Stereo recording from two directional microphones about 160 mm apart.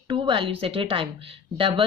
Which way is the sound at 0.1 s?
30° right (ahead or behind).